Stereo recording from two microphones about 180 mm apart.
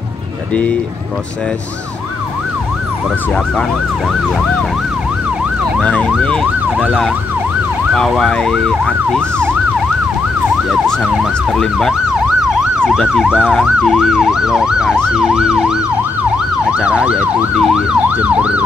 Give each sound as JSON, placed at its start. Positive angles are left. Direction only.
{"t": 5.8, "sound": "emergency vehicle", "side_deg": 5}
{"t": 7.9, "sound": "emergency vehicle", "side_deg": 0}
{"t": 10.7, "sound": "emergency vehicle", "side_deg": 0}